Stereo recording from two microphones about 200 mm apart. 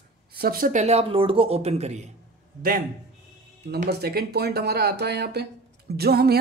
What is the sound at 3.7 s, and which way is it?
Speech, 50° right (ahead or behind).